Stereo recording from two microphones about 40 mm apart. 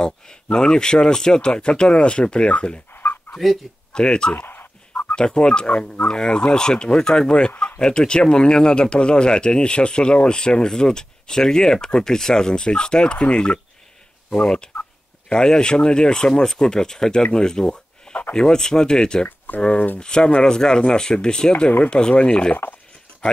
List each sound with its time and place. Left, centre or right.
0.0 s speech: centre
2.9 s dog: left
3.9 s speech: left
4.4 s fowl: left
5.1 s speech: left
19.2 s speech: left
19.6 s speech: left